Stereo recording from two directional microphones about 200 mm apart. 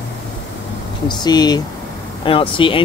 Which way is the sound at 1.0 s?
20° left (ahead or behind).